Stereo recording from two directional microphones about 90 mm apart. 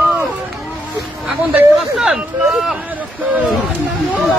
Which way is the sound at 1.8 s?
5° right (ahead or behind).